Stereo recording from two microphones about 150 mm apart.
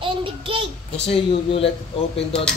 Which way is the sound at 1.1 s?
40° left (ahead or behind).